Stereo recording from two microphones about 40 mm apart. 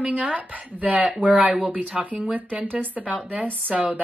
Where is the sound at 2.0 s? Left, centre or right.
Right.